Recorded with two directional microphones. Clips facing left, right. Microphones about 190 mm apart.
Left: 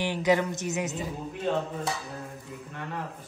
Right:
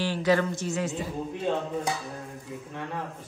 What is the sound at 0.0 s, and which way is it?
Speech, 20° left (ahead or behind).